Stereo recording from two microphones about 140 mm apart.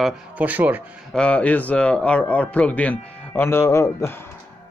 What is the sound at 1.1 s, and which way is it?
Speech, 10° left (ahead or behind).